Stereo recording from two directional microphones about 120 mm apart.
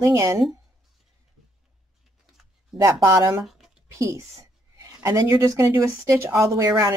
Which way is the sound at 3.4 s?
Centre (ahead or behind).